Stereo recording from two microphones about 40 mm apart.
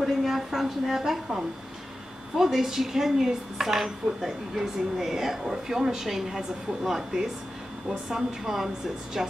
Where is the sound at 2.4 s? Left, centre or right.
Centre.